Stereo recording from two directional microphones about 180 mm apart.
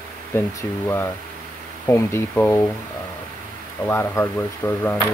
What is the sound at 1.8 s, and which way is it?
Speech, 15° left (ahead or behind).